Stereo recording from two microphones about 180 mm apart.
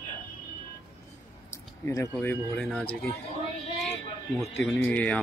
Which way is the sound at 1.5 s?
15° left (ahead or behind).